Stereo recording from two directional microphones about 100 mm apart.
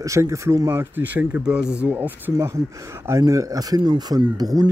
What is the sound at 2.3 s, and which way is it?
Speech, 30° right (ahead or behind).